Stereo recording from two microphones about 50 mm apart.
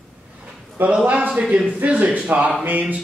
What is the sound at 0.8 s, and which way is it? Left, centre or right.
Speech, right.